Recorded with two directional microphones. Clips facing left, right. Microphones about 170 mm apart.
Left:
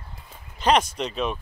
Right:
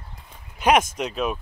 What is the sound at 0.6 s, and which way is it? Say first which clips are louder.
Speech: right 2 dB; 10° right (ahead or behind).